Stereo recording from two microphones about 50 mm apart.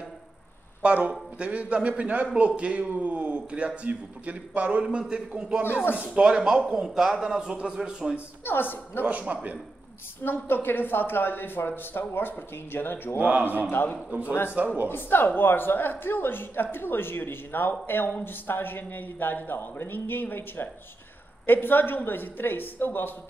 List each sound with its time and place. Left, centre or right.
0.8 s a man's voice: right
8.5 s a woman's voice: left
9.0 s a man's voice: right
10.2 s a woman's voice: left
13.2 s a man's voice: right
13.7 s a woman's voice: left
14.5 s a man's voice: right
14.9 s a woman's voice: left